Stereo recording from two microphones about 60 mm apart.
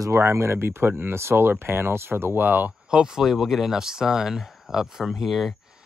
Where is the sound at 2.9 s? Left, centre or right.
Centre.